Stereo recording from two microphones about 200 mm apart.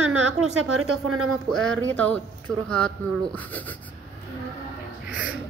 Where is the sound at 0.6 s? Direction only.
90° right.